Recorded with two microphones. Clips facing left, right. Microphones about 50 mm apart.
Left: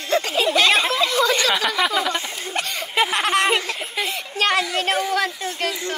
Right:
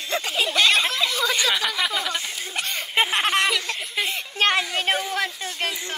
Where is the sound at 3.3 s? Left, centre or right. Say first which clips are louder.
Left 3 dB; left.